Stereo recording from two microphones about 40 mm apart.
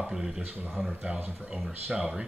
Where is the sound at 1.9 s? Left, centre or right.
Centre.